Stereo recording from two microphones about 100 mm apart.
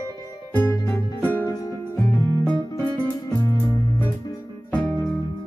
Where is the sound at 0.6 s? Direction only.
35° left (ahead or behind).